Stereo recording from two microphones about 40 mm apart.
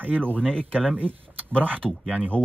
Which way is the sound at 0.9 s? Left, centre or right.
Right.